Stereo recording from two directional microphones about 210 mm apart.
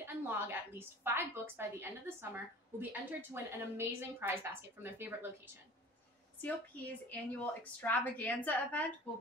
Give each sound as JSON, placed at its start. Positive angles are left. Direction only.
{"t": 0.0, "sound": "a woman's voice", "side_deg": -10}
{"t": 6.4, "sound": "a woman's voice", "side_deg": 10}